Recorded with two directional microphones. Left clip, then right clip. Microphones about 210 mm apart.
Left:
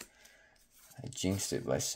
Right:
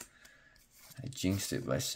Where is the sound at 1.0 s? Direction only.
15° right (ahead or behind).